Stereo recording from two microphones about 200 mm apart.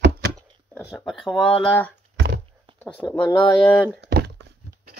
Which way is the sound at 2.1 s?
60° right (ahead or behind).